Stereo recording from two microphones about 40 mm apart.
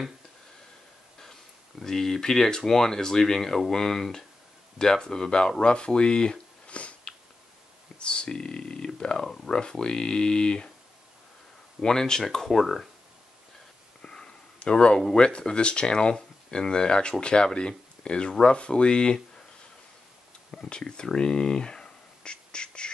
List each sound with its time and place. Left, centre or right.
1.2 s speech: centre
6.7 s a sound: left
8.0 s speech: left
9.2 s speech: centre
9.5 s speech: left
11.8 s speech: centre
14.0 s a sound: left
15.1 s speech: left
20.5 s a sound: centre